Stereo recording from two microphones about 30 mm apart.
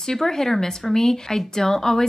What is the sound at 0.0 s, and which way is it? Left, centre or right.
Speech, centre.